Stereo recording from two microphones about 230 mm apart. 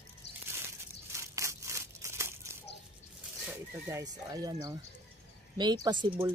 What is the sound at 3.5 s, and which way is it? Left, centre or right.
Speech, centre.